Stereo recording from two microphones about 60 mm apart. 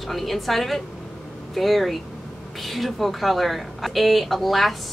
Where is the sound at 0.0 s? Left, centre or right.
Centre.